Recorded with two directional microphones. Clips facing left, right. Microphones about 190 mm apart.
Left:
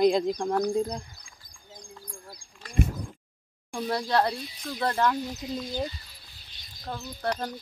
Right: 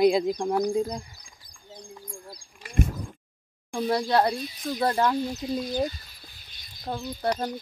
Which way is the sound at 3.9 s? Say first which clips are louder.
Right 3 dB; 5° right (ahead or behind).